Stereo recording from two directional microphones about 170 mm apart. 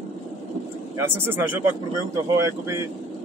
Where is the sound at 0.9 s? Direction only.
10° right (ahead or behind).